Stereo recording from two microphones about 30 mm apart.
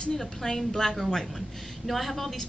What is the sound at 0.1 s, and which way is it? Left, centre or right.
Speech, centre.